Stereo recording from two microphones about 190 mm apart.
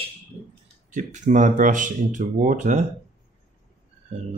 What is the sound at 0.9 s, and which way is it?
Speech, 40° right (ahead or behind).